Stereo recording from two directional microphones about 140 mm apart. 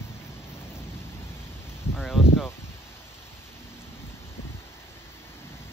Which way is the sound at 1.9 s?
5° right (ahead or behind).